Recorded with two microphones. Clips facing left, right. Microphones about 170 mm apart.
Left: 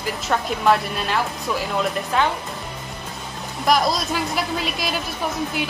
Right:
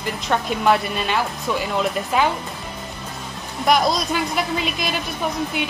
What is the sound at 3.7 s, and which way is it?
A woman's voice, centre (ahead or behind).